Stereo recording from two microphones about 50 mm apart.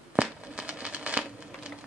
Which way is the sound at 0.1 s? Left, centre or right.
Right.